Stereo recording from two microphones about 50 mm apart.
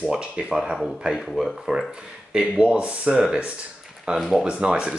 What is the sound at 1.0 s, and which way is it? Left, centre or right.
Speech, centre.